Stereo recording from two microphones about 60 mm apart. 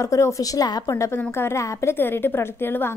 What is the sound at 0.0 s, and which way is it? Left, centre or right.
A woman's voice, left.